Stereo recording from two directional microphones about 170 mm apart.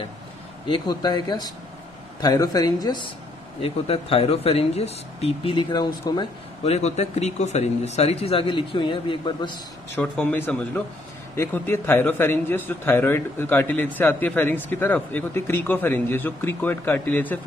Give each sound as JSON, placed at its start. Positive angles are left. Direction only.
{"t": 0.7, "sound": "speech", "side_deg": 25}
{"t": 3.6, "sound": "speech", "side_deg": 35}
{"t": 6.6, "sound": "speech", "side_deg": 40}
{"t": 9.9, "sound": "a man's voice", "side_deg": 10}